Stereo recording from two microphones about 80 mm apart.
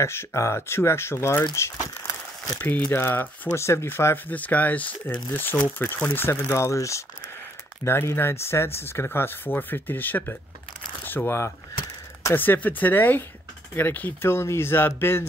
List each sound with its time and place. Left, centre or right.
0.0 s speech: left
2.0 s crumpling: left
2.6 s speech: left
4.3 s speech: centre
6.4 s speech: left
12.4 s speech: left